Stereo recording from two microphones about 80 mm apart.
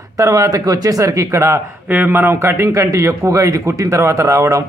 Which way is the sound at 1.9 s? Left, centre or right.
Right.